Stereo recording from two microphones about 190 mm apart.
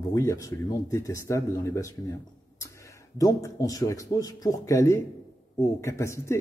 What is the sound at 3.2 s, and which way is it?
A man's voice, 20° left (ahead or behind).